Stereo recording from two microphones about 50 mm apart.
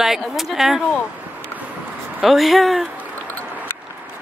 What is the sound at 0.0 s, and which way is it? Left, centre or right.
Speech, centre.